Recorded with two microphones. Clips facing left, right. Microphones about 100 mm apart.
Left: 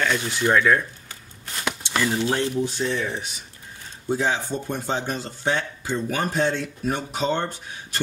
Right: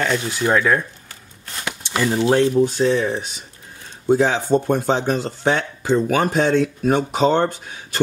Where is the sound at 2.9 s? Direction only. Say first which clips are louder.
Right 7 dB; 35° right (ahead or behind).